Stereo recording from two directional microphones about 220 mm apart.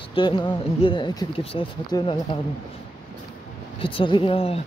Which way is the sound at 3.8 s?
25° left (ahead or behind).